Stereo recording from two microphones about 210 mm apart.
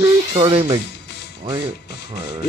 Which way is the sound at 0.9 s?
50° left (ahead or behind).